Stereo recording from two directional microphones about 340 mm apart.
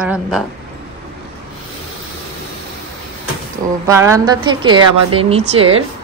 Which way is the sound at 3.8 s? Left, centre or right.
Centre.